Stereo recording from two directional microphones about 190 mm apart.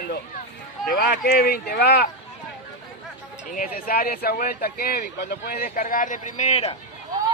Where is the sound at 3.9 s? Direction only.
55° left (ahead or behind); by 6.7 s 35° left (ahead or behind).